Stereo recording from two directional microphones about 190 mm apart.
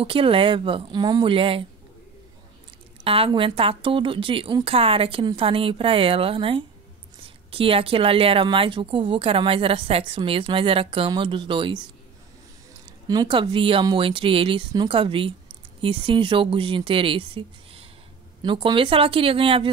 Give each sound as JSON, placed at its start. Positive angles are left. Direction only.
{"t": 0.0, "sound": "a woman's voice", "side_deg": -30}
{"t": 3.0, "sound": "a woman's voice", "side_deg": -30}
{"t": 13.1, "sound": "a woman's voice", "side_deg": -25}